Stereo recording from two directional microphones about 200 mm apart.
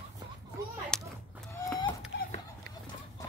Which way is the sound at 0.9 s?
5° left (ahead or behind).